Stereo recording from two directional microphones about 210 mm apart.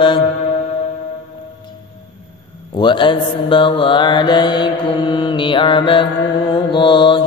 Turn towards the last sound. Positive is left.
turn(degrees=25)  # may be behind; listen again after turning